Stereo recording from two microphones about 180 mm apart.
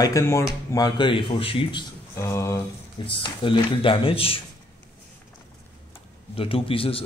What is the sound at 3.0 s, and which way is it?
Speech, 30° left (ahead or behind).